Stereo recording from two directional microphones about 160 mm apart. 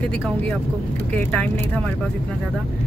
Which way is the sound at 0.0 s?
5° left (ahead or behind).